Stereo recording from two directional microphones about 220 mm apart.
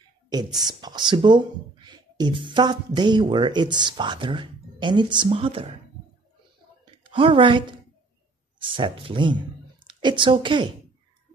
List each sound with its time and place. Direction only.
0.6 s speech: 20° right (ahead or behind)
7.1 s a woman's voice: 25° right (ahead or behind)